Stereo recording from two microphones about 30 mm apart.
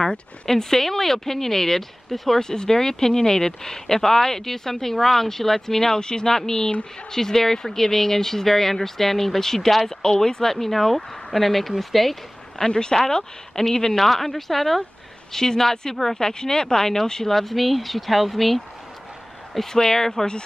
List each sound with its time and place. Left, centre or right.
0.5 s speech: centre
2.4 s speech: left
5.9 s speech: left
10.5 s speech: centre
12.6 s speech: left